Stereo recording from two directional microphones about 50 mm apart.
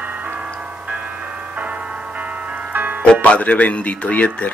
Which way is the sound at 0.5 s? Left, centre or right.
Right.